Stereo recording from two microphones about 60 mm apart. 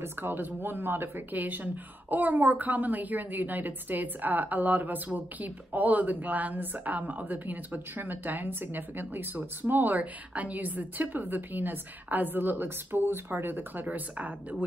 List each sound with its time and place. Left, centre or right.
0.0 s a woman's voice: right